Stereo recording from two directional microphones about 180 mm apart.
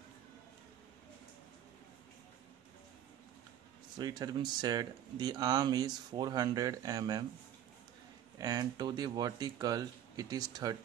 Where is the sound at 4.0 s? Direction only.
25° right (ahead or behind).